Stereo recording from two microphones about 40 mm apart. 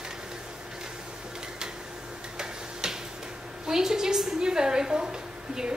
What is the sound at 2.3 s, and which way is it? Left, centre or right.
Tick-tock, centre.